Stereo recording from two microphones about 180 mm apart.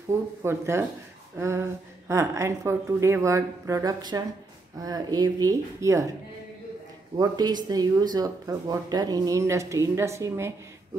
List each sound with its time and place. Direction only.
0.1 s a woman's voice: 15° right (ahead or behind)
7.2 s a woman's voice: 20° right (ahead or behind)